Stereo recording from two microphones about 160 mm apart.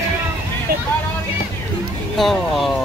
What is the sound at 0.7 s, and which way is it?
Vehicle, 70° right (ahead or behind).